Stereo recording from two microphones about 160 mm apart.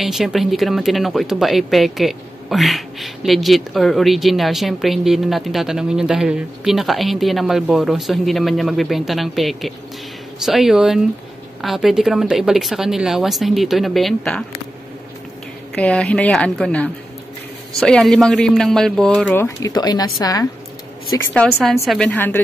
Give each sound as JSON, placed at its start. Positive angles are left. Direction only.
{"t": 0.0, "sound": "speech", "side_deg": 0}
{"t": 15.7, "sound": "speech", "side_deg": 5}
{"t": 19.4, "sound": "a woman's voice", "side_deg": 20}
{"t": 21.4, "sound": "a woman's voice", "side_deg": 10}